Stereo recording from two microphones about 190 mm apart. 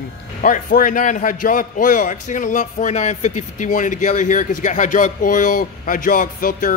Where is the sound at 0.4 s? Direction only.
45° left (ahead or behind).